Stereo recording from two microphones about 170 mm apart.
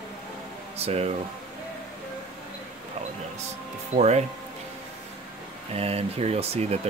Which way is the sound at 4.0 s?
40° right (ahead or behind).